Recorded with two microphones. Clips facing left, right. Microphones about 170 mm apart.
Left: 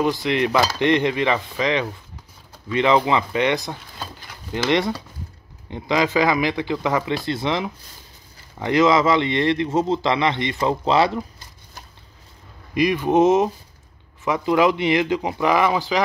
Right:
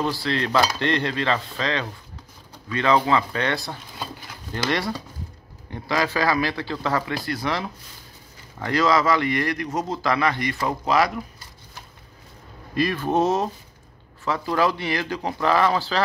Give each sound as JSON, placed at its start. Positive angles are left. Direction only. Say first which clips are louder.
{"t": 0.0, "sound": "a man's voice", "louder": "left 5 dB", "side_deg": 20}
{"t": 12.7, "sound": "speech", "louder": "left 4 dB", "side_deg": 15}